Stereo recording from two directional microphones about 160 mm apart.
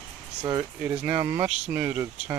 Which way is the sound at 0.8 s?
10° right (ahead or behind).